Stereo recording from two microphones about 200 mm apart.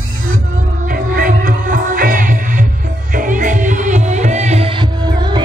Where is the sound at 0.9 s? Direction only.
45° right (ahead or behind).